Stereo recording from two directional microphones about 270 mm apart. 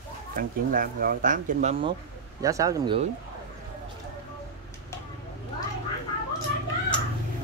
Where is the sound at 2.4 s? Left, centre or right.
Centre.